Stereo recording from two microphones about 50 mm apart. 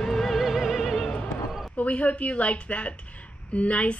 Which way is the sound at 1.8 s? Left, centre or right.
Left.